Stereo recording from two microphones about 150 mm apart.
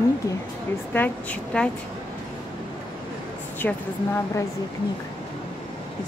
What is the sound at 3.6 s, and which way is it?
Speech, 10° left (ahead or behind).